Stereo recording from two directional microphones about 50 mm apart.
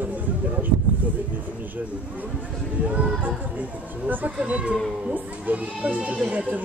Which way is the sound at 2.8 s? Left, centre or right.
Right.